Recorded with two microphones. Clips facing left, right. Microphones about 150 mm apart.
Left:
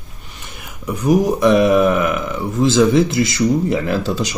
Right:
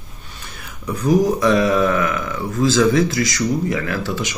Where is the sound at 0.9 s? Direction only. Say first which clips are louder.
Left 1 dB; 15° left (ahead or behind).